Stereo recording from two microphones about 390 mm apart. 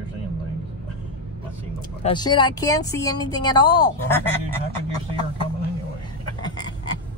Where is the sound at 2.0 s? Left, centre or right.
Centre.